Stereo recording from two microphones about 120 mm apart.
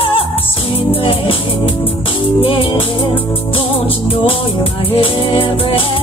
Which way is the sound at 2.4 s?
50° left (ahead or behind).